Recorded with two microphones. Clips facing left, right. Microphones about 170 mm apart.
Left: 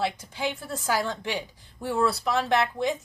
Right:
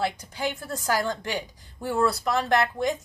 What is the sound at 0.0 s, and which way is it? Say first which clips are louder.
A woman's voice: right 1 dB; centre (ahead or behind).